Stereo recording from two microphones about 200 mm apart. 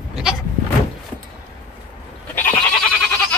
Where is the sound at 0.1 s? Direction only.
5° right (ahead or behind).